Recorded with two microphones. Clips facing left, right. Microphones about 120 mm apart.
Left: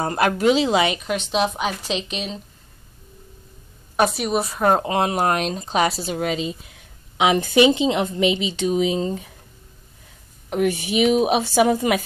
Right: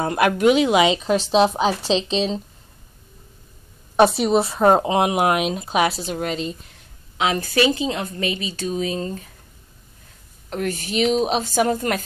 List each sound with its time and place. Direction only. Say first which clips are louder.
0.0 s speech: right 2 dB; 5° right (ahead or behind)
0.9 s a woman's voice: right 5 dB; 30° right (ahead or behind)
4.3 s speech: right 3 dB; 30° right (ahead or behind); by 6.7 s 5° left (ahead or behind)
7.2 s a woman's voice: left 4 dB; 20° left (ahead or behind)
10.5 s a woman's voice: left 4 dB; 10° left (ahead or behind)